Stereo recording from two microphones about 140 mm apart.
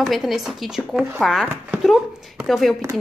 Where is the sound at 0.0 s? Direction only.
Centre (ahead or behind).